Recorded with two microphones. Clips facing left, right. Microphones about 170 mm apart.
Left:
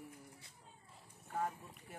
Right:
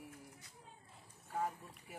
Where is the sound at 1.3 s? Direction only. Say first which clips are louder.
Even; centre (ahead or behind).